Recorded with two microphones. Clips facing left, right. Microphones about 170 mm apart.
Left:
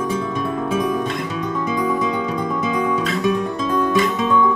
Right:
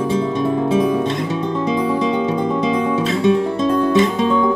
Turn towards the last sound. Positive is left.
turn(degrees=-25)  # may be behind; listen again after turning